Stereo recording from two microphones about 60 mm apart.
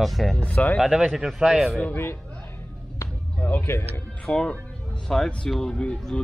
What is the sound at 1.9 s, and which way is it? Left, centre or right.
Speech, left.